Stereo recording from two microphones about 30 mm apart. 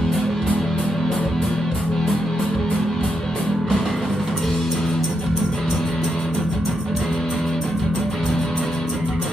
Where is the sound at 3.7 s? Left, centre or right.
Centre.